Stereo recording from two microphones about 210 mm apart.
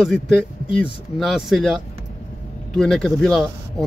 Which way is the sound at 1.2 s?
Centre (ahead or behind).